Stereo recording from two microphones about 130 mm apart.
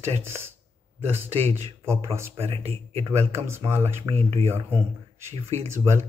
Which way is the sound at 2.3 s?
50° right (ahead or behind).